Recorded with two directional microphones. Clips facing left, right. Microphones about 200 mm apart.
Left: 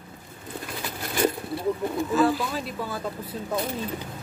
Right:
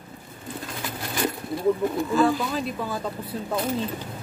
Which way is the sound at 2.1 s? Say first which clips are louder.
Even; 5° left (ahead or behind).